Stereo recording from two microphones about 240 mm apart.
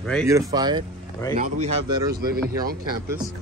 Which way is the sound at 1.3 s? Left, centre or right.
Right.